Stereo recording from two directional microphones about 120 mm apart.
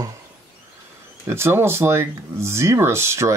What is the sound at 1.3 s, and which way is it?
Speech, 20° right (ahead or behind).